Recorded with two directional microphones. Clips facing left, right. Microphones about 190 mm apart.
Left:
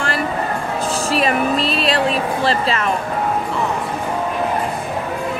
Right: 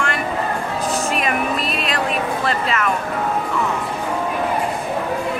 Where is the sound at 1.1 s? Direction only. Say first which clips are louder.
Left 4 dB; 30° left (ahead or behind).